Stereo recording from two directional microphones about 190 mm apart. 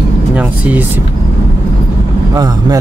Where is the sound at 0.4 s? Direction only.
5° right (ahead or behind).